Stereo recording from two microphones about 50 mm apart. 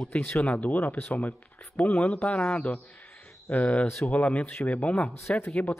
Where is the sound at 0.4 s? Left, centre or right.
Left.